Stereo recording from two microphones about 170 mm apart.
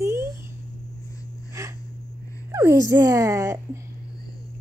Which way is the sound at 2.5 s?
15° right (ahead or behind).